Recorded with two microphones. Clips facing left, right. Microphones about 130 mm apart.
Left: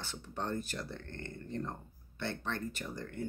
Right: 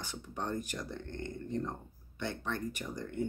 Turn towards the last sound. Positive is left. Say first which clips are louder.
# right 3 dB
turn(degrees=-15)  # may be behind; listen again after turning